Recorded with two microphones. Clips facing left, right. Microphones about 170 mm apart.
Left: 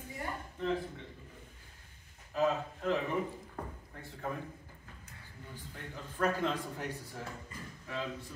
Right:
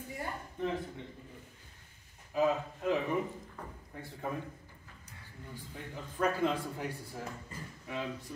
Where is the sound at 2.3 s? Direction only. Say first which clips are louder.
Right 1 dB; 10° right (ahead or behind).